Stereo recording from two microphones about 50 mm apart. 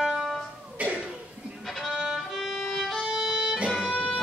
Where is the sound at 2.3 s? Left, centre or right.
Centre.